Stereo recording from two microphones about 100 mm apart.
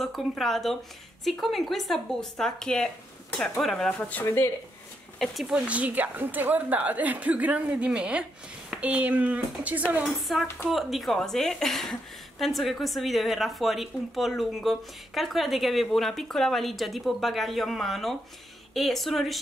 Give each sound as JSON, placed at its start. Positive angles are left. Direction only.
{"t": 0.4, "sound": "a woman's voice", "side_deg": 0}
{"t": 4.1, "sound": "speech", "side_deg": 20}
{"t": 5.2, "sound": "a woman's voice", "side_deg": 0}
{"t": 5.5, "sound": "a woman's voice", "side_deg": -15}
{"t": 10.0, "sound": "a woman's voice", "side_deg": 0}